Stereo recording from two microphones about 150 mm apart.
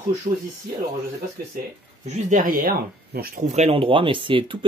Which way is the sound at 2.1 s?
55° right (ahead or behind).